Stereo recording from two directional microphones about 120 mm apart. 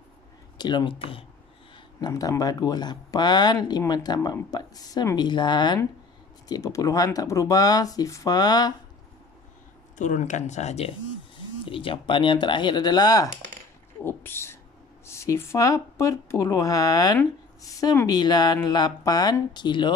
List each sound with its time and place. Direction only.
0.6 s speech: 40° left (ahead or behind)
2.0 s speech: 35° left (ahead or behind)
9.9 s speech: 90° left; by 11.0 s 60° left (ahead or behind)
11.6 s speech: 45° left (ahead or behind)
14.0 s speech: 20° left (ahead or behind); by 19.9 s 40° left (ahead or behind)